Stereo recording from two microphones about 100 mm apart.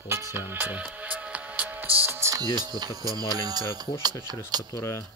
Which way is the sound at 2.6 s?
40° right (ahead or behind).